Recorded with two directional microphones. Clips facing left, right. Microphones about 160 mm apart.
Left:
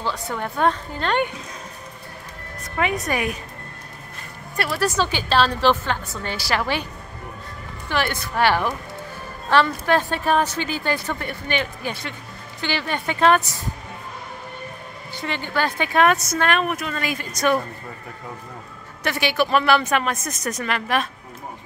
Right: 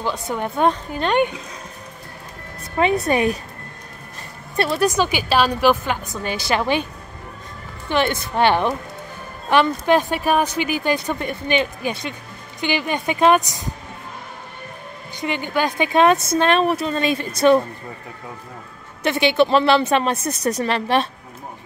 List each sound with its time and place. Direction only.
0.0 s speech: 20° right (ahead or behind)
2.6 s speech: 30° right (ahead or behind)
4.6 s speech: 25° right (ahead or behind)
7.9 s speech: 20° right (ahead or behind)
15.1 s speech: 15° right (ahead or behind)
19.0 s speech: 20° right (ahead or behind)